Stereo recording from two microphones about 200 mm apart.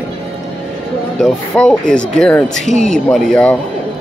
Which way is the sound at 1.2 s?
5° left (ahead or behind).